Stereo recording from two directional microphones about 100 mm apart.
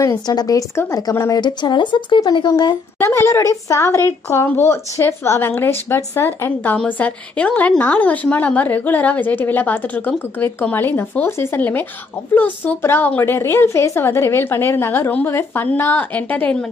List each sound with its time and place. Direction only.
0.0 s speech: 40° left (ahead or behind)
1.4 s speech: 45° left (ahead or behind)
3.0 s a woman's voice: 25° left (ahead or behind)